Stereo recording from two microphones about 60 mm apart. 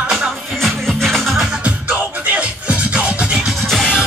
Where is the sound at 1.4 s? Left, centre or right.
Centre.